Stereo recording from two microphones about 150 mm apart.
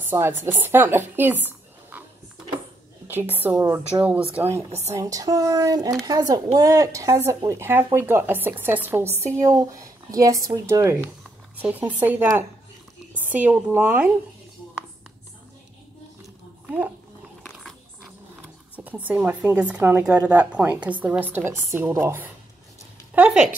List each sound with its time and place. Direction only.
0.1 s a woman's voice: 15° right (ahead or behind)
3.1 s speech: 15° right (ahead or behind)
4.6 s speech: 45° right (ahead or behind)
4.9 s a woman's voice: 25° right (ahead or behind); by 14.1 s 10° right (ahead or behind)
16.6 s a sound: 10° right (ahead or behind)
18.9 s speech: 10° right (ahead or behind)